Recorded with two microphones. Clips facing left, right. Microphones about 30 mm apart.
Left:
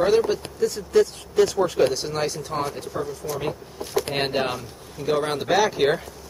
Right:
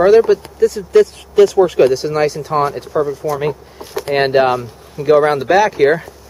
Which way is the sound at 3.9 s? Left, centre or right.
Centre.